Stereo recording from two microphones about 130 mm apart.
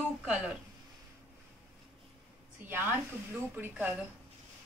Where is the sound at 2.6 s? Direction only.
15° right (ahead or behind).